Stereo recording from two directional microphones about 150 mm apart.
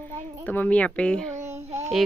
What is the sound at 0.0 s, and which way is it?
Speech, 15° left (ahead or behind).